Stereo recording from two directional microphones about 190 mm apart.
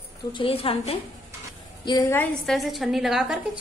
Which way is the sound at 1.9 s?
15° left (ahead or behind).